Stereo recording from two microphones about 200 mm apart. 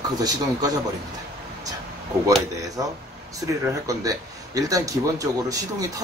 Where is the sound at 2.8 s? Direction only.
15° right (ahead or behind).